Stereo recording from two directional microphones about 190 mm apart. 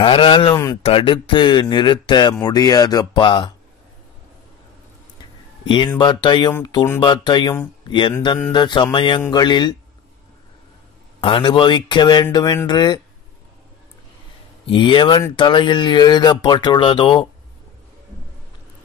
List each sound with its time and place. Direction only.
0.0 s speech: 25° left (ahead or behind)
5.7 s speech: 25° left (ahead or behind)
11.1 s speech: 25° left (ahead or behind)
14.7 s speech: 25° left (ahead or behind)